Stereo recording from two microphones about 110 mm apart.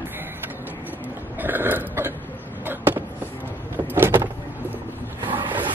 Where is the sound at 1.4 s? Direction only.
20° right (ahead or behind).